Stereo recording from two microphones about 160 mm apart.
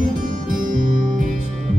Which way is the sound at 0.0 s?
60° right (ahead or behind).